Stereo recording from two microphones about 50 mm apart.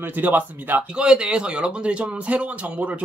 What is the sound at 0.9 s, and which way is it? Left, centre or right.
Speech, centre.